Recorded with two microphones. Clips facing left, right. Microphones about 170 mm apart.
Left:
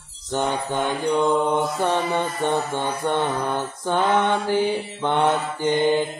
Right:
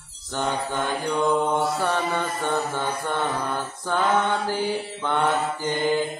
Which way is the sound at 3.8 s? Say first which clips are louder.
Left 2 dB; 20° left (ahead or behind).